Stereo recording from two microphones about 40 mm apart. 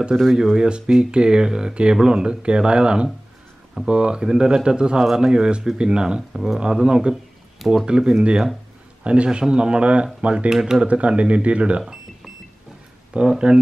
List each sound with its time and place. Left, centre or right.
0.1 s speech: centre
6.3 s speech: centre
6.6 s speech: right
7.5 s speech: centre
7.8 s speech: right
10.5 s speech: centre
10.9 s speech: right
13.3 s speech: right